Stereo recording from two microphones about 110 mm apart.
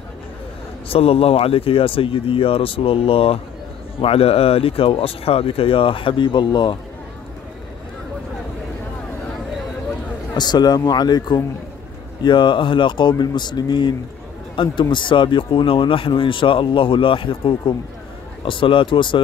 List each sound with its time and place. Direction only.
0.8 s speech: 60° left (ahead or behind); by 6.8 s 45° left (ahead or behind)
10.3 s speech: 40° left (ahead or behind)